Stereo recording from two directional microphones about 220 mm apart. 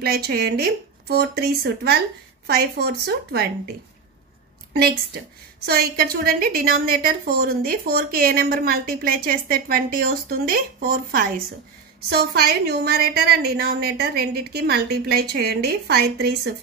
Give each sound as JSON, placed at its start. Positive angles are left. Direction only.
{"t": 0.0, "sound": "a woman's voice", "side_deg": -45}
{"t": 4.7, "sound": "a woman's voice", "side_deg": -45}